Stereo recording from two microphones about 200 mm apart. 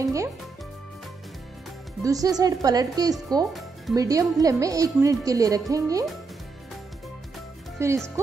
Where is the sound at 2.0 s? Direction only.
15° right (ahead or behind).